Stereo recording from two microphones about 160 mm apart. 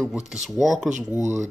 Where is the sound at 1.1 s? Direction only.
20° left (ahead or behind).